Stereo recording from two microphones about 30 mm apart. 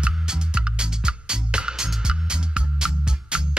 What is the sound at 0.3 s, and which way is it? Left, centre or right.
Music, right.